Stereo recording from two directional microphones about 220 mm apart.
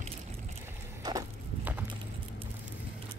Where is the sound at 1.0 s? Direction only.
15° right (ahead or behind).